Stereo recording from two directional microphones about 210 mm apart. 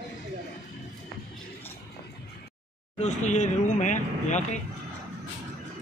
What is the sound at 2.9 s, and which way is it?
Speech, 35° left (ahead or behind).